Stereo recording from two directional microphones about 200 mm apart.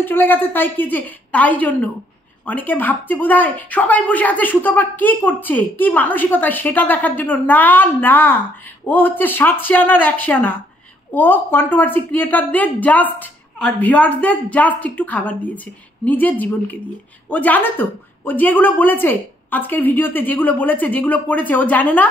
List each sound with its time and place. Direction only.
0.0 s speech: 10° left (ahead or behind)